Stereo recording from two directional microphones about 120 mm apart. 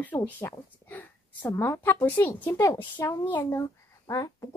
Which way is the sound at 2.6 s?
30° left (ahead or behind).